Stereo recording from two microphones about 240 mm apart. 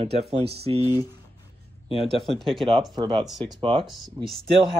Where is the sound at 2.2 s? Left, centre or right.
Centre.